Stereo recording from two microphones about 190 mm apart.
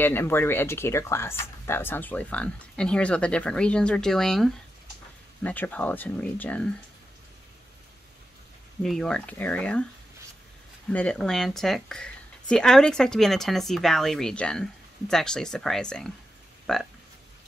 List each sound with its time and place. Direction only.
0.0 s speech: 10° left (ahead or behind)
8.8 s a woman's voice: 5° left (ahead or behind)
10.9 s a woman's voice: 5° left (ahead or behind)